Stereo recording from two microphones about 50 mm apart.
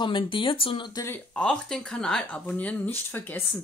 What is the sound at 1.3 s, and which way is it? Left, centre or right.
Speech, left.